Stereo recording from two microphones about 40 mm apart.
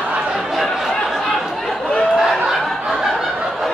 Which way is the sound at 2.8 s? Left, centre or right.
Centre.